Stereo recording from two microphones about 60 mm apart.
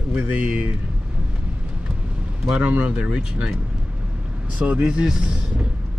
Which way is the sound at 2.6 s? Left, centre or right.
Right.